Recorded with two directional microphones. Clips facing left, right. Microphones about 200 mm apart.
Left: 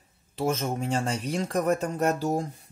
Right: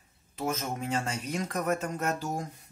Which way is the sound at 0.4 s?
30° left (ahead or behind).